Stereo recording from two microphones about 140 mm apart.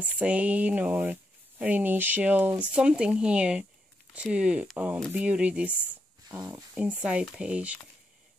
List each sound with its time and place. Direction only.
0.0 s speech: 10° right (ahead or behind)